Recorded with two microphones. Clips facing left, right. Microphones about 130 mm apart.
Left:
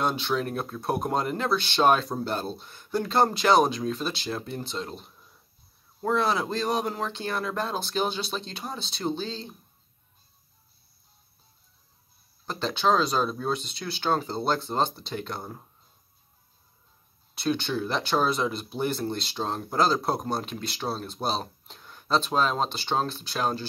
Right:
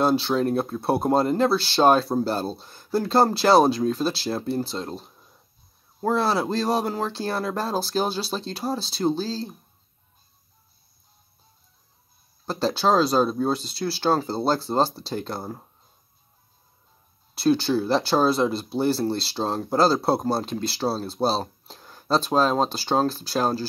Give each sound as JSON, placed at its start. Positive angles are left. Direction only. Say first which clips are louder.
{"t": 0.0, "sound": "speech", "louder": "right 6 dB", "side_deg": -35}
{"t": 12.4, "sound": "speech", "louder": "right 3 dB", "side_deg": -35}
{"t": 17.4, "sound": "speech", "louder": "right 7 dB", "side_deg": -35}